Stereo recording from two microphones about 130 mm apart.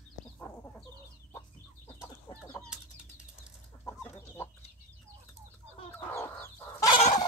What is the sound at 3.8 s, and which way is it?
Chicken, 15° left (ahead or behind).